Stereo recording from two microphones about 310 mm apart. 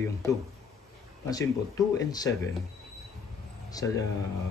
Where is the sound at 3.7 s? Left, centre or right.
Centre.